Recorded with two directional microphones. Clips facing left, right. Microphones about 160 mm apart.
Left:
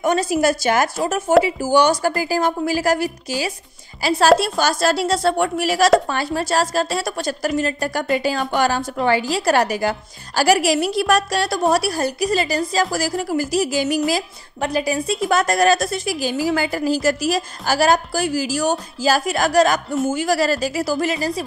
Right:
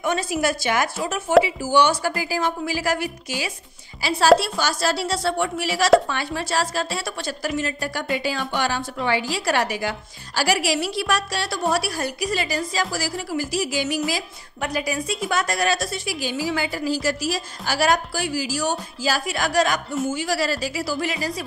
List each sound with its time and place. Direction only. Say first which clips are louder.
0.0 s a woman's voice: left 5 dB; 40° left (ahead or behind)
4.4 s a woman's voice: left 5 dB; 50° left (ahead or behind)
12.9 s a woman's voice: left 5 dB; 50° left (ahead or behind); by 15.1 s 30° left (ahead or behind)
15.2 s a woman's voice: left 7 dB; 45° left (ahead or behind)